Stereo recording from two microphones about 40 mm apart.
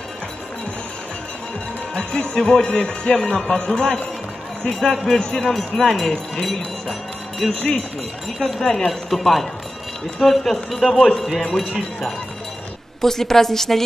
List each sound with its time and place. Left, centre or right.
2.0 s a man's voice: left
6.5 s music: centre
8.4 s speech: centre
8.6 s a man's voice: centre
9.1 s speech: centre
13.0 s a man's voice: centre